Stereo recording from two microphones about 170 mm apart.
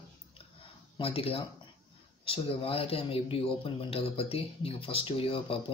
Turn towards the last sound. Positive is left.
turn(degrees=30)  # may be behind; listen again after turning